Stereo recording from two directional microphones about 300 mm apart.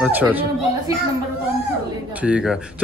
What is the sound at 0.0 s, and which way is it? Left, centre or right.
Speech, centre.